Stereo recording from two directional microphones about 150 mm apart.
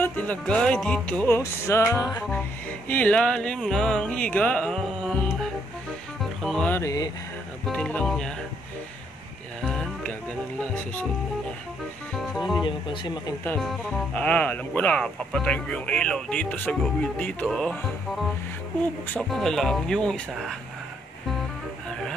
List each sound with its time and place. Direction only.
0.0 s speech: 10° left (ahead or behind)
2.9 s speech: 10° left (ahead or behind)
6.4 s music: 5° left (ahead or behind)
6.7 s speech: 20° left (ahead or behind)
7.6 s speech: 5° left (ahead or behind)
10.6 s speech: 10° left (ahead or behind)
12.6 s speech: 30° left (ahead or behind)
13.6 s speech: 5° left (ahead or behind)